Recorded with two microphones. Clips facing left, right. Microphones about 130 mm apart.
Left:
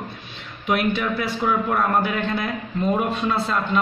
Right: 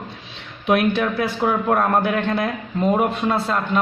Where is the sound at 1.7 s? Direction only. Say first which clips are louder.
Right 3 dB; 55° right (ahead or behind).